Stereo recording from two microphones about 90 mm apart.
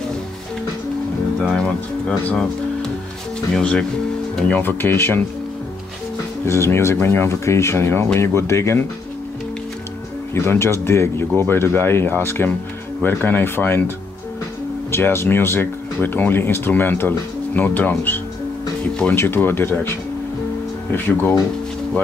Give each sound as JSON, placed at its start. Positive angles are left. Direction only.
{"t": 1.4, "sound": "speech", "side_deg": 10}
{"t": 3.5, "sound": "speech", "side_deg": 10}
{"t": 4.5, "sound": "speech", "side_deg": 20}
{"t": 6.4, "sound": "speech", "side_deg": 30}
{"t": 10.3, "sound": "speech", "side_deg": 30}